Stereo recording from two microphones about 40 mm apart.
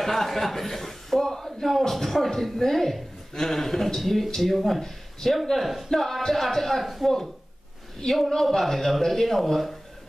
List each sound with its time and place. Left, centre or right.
0.0 s a man's voice: centre